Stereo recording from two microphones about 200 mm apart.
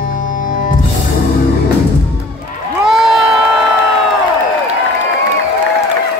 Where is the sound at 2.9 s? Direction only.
Centre (ahead or behind).